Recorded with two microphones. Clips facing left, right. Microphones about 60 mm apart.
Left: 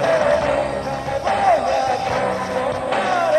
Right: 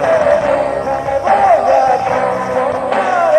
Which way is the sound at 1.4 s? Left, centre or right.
Right.